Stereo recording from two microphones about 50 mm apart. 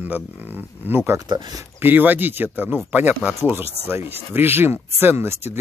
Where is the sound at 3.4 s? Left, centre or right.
Right.